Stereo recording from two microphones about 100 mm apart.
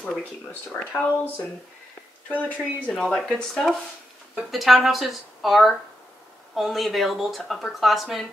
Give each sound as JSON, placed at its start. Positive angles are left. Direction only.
{"t": 0.0, "sound": "speech", "side_deg": 5}
{"t": 2.2, "sound": "speech", "side_deg": 15}
{"t": 4.4, "sound": "speech", "side_deg": 0}